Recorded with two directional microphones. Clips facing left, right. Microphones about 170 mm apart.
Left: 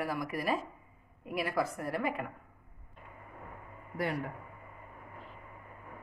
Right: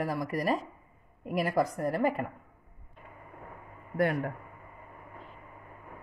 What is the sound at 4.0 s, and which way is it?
Speech, 55° right (ahead or behind).